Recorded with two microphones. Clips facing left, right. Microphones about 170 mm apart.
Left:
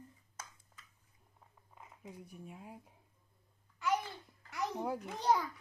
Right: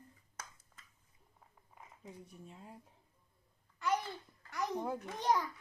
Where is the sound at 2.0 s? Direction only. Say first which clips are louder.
Left 2 dB; 10° left (ahead or behind).